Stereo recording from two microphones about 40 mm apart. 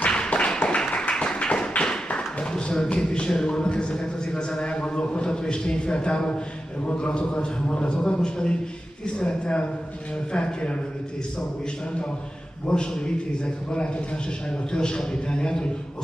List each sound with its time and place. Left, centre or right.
0.0 s tap: left
2.5 s a sound: centre
2.9 s speech: left
12.6 s speech: left
14.7 s speech: left